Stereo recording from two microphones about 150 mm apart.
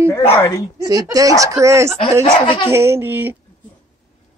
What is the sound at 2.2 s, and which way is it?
Speech, 35° left (ahead or behind).